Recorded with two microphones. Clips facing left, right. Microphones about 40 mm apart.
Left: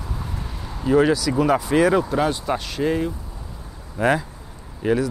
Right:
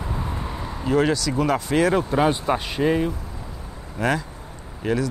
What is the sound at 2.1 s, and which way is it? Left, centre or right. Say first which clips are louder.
Speech: right 1 dB; centre.